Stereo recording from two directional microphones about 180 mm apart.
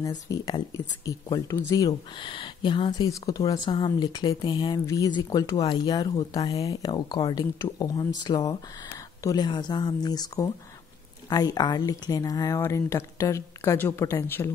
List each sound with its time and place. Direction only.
0.0 s speech: 20° left (ahead or behind)